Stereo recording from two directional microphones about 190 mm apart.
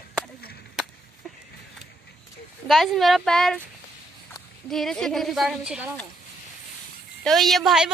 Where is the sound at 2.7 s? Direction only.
Centre (ahead or behind).